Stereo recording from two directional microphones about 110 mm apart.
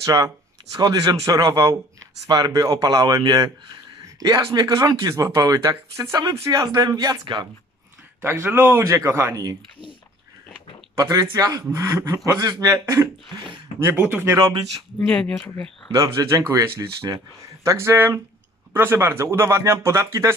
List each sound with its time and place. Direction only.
0.0 s speech: 30° right (ahead or behind)
4.6 s speech: 35° right (ahead or behind)
8.2 s speech: 20° right (ahead or behind)
11.0 s speech: 30° right (ahead or behind)
14.2 s speech: 30° right (ahead or behind)
15.0 s speech: 10° left (ahead or behind)
15.9 s speech: 30° right (ahead or behind)